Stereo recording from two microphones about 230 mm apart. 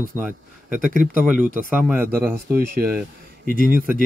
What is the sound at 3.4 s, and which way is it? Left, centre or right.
Speech, right.